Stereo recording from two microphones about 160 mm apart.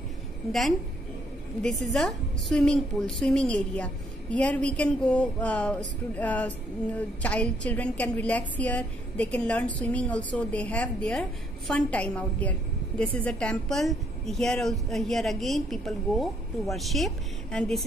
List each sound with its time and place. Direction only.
0.5 s a woman's voice: centre (ahead or behind)